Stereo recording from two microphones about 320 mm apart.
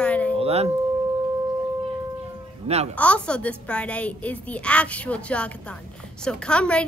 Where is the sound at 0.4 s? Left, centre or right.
Centre.